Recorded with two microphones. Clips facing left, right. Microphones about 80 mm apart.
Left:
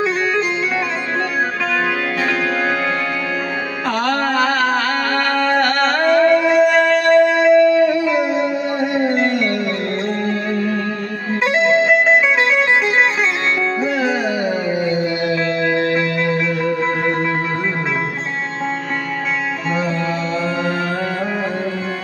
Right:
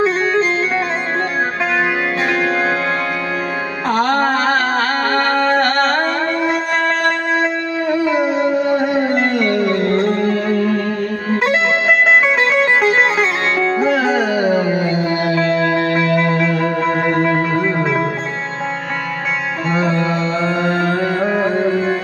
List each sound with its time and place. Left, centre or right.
0.0 s music: right
3.9 s music: right
9.4 s music: right
13.6 s sitar: right
14.1 s music: right